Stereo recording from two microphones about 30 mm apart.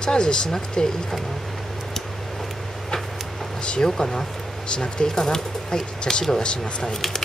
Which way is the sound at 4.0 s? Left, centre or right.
Centre.